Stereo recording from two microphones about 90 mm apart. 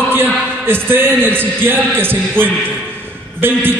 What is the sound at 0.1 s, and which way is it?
A man's voice, 25° right (ahead or behind).